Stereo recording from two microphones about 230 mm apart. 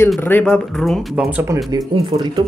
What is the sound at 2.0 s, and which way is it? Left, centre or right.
Speech, right.